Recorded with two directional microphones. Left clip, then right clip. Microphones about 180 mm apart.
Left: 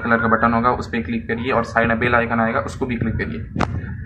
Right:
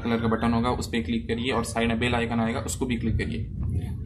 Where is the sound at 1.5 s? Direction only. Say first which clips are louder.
Left 10 dB; 20° right (ahead or behind).